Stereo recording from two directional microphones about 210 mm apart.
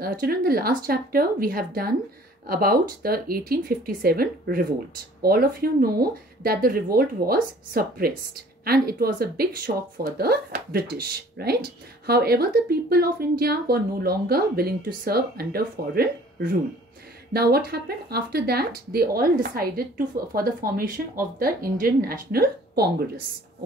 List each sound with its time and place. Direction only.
0.0 s speech: 45° right (ahead or behind)